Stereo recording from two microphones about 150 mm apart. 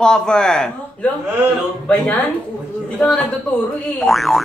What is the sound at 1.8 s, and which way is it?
Speech, 10° left (ahead or behind).